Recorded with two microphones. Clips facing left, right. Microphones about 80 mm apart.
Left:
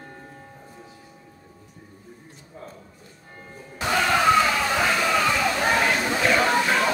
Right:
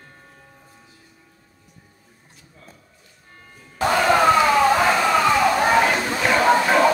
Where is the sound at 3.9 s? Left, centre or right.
Centre.